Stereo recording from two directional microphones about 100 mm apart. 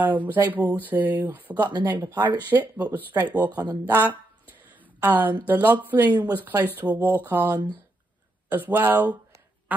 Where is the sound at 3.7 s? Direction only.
20° right (ahead or behind).